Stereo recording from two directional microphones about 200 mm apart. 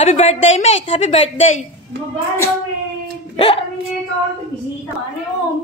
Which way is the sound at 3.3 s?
30° left (ahead or behind).